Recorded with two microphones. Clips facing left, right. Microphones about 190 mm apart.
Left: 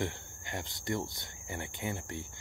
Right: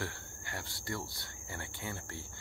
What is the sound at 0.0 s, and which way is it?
Speech, 20° left (ahead or behind).